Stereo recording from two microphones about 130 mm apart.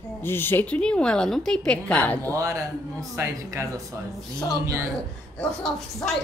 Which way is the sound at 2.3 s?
25° right (ahead or behind).